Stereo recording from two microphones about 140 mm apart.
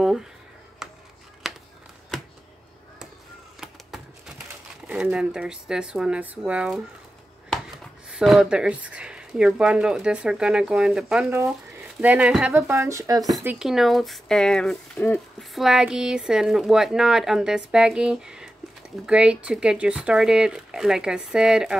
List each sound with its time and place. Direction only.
0.0 s a sound: 5° right (ahead or behind)
1.4 s a sound: 5° right (ahead or behind)
4.8 s speech: 5° right (ahead or behind)
8.1 s speech: 5° right (ahead or behind)
11.2 s speech: 20° right (ahead or behind)
13.6 s speech: centre (ahead or behind)